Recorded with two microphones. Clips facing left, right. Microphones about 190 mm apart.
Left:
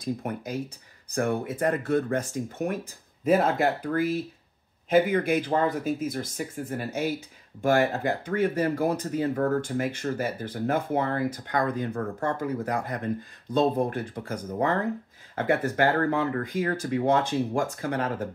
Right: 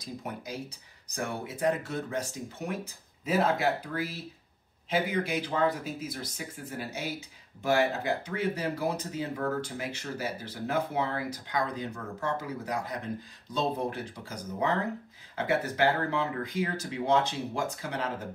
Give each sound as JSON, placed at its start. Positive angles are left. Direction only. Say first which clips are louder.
{"t": 0.0, "sound": "speech", "louder": "left 8 dB", "side_deg": 55}